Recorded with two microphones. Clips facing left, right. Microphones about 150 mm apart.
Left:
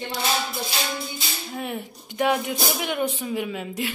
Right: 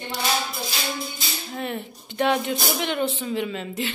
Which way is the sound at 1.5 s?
10° left (ahead or behind).